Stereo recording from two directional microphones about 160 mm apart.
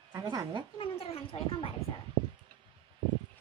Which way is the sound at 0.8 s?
40° left (ahead or behind).